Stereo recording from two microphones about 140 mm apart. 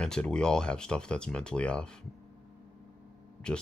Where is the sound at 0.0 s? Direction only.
5° left (ahead or behind).